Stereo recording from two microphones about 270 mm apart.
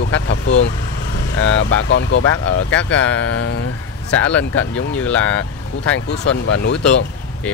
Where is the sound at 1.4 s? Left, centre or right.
Left.